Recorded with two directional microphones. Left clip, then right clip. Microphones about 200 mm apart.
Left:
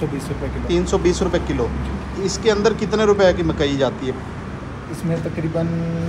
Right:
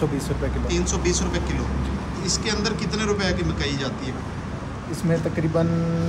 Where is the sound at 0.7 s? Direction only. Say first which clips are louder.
Left 8 dB; 5° left (ahead or behind).